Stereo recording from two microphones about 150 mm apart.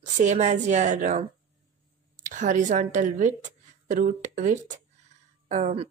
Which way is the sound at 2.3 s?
55° right (ahead or behind).